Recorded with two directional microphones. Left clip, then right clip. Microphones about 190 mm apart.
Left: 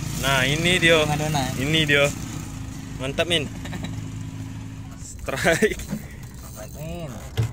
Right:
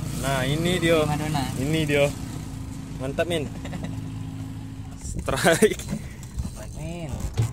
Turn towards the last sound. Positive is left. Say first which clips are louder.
# right 1 dB
turn(degrees=-25)  # may be behind; listen again after turning